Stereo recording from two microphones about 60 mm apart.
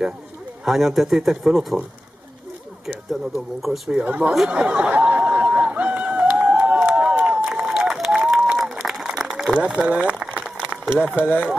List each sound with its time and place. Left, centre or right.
0.7 s speech: centre
2.9 s speech: centre
4.0 s speech: right
4.5 s a sound: right
8.0 s applause: centre
8.5 s a sound: centre
9.8 s speech: centre
10.7 s a sound: centre
11.1 s speech: left